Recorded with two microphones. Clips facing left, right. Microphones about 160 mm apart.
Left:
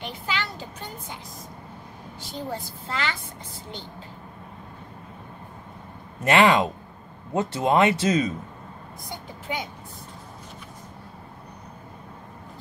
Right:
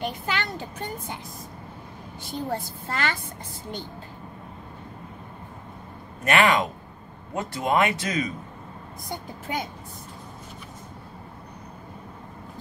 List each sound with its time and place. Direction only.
0.0 s child singing: 50° right (ahead or behind)
2.5 s a woman's voice: 50° right (ahead or behind)
6.2 s speech: 25° left (ahead or behind)
9.1 s a child's voice: 45° right (ahead or behind)